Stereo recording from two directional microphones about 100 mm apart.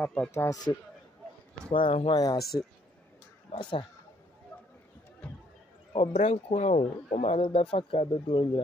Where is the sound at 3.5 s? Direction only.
90° left.